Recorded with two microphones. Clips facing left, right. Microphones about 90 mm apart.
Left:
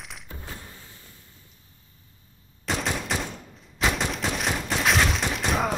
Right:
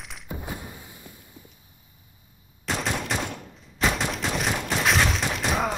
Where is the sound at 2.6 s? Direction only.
Centre (ahead or behind).